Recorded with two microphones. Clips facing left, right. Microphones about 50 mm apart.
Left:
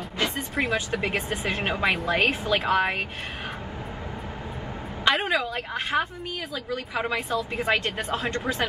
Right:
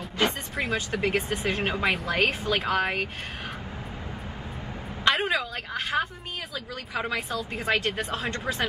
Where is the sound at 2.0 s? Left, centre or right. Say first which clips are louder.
Left 2 dB; left.